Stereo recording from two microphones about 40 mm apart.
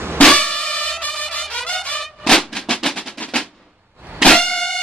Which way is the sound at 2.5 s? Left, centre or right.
Centre.